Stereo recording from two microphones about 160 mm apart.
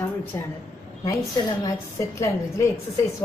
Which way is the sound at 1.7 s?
20° left (ahead or behind).